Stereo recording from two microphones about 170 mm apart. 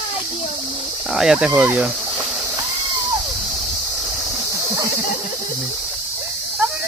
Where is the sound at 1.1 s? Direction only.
5° right (ahead or behind).